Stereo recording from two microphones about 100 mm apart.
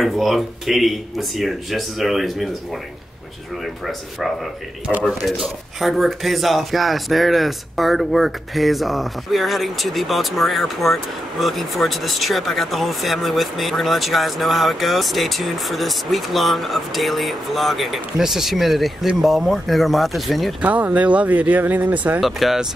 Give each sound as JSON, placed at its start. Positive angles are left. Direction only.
{"t": 0.0, "sound": "speech", "side_deg": 0}
{"t": 20.6, "sound": "speech", "side_deg": -15}
{"t": 22.2, "sound": "speech", "side_deg": 0}